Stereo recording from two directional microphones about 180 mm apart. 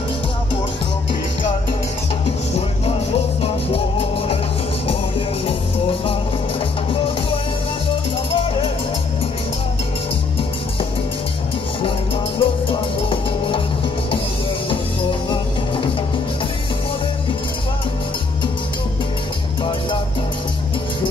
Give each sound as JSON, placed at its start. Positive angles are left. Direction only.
{"t": 3.7, "sound": "music", "side_deg": 30}
{"t": 8.3, "sound": "music", "side_deg": 30}
{"t": 12.4, "sound": "music", "side_deg": 30}